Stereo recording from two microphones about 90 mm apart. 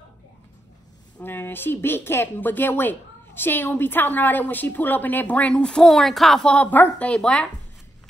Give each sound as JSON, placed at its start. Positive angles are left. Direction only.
{"t": 1.2, "sound": "speech", "side_deg": 25}